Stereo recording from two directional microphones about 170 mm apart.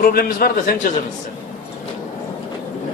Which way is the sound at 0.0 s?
60° left (ahead or behind).